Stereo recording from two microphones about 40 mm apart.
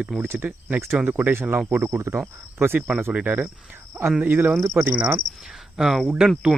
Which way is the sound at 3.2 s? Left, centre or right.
Right.